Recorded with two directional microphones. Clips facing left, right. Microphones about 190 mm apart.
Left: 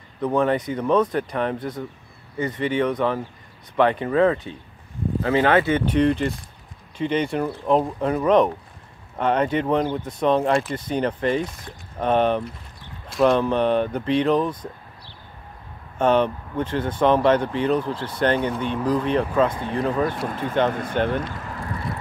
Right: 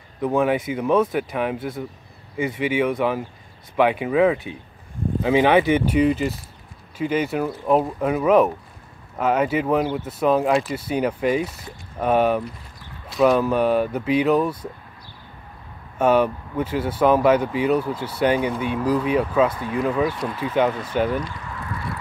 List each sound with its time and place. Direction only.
0.2 s speech: 5° right (ahead or behind)
16.0 s speech: 10° right (ahead or behind)
19.5 s speech: 25° left (ahead or behind)
19.8 s speech: 5° right (ahead or behind)
20.2 s speech: 50° left (ahead or behind)
20.9 s speech: 5° right (ahead or behind)
21.3 s a sound: 50° left (ahead or behind)